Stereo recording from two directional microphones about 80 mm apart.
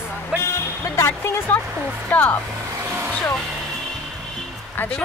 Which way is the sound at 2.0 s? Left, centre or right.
Centre.